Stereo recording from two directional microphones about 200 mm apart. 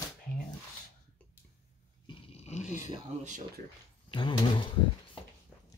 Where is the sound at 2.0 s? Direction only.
30° left (ahead or behind).